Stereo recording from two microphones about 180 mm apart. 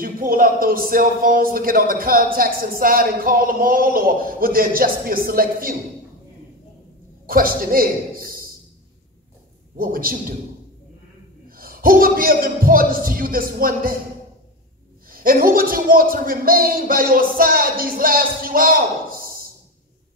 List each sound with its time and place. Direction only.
0.0 s a man's voice: 55° right (ahead or behind)
7.2 s a man's voice: 55° right (ahead or behind)
9.8 s a man's voice: 55° right (ahead or behind)
11.4 s a man's voice: 55° right (ahead or behind)
15.0 s a man's voice: 55° right (ahead or behind)